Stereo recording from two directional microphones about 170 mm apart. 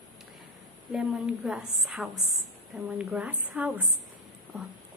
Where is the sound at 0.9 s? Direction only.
5° right (ahead or behind).